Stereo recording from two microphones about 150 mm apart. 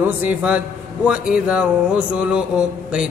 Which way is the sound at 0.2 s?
10° right (ahead or behind).